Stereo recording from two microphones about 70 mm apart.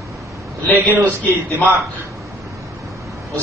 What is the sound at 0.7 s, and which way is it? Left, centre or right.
Speech, right.